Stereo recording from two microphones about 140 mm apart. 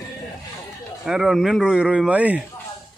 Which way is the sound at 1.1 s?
5° right (ahead or behind).